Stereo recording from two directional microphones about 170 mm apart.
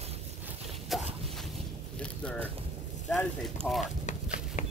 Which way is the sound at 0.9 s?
Centre (ahead or behind).